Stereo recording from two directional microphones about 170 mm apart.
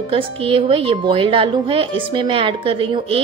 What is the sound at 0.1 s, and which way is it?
A woman's voice, 30° right (ahead or behind).